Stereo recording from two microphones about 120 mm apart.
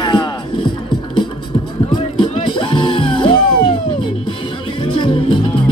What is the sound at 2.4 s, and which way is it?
Music, 45° left (ahead or behind).